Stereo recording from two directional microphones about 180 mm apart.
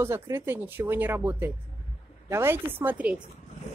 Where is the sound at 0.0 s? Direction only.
15° right (ahead or behind).